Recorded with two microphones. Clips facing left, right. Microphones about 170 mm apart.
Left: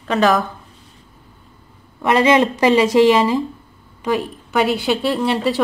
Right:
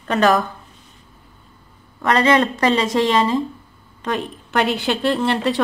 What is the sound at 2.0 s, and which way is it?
A woman's voice, 15° left (ahead or behind).